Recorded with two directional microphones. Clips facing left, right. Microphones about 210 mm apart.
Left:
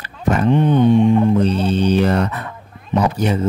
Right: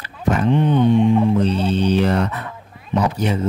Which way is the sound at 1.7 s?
45° left (ahead or behind).